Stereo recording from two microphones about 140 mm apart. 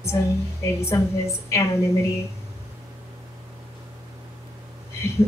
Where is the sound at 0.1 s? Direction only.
20° left (ahead or behind).